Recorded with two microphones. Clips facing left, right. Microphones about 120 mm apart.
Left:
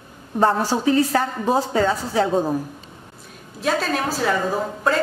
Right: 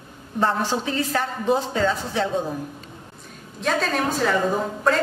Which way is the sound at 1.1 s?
40° left (ahead or behind).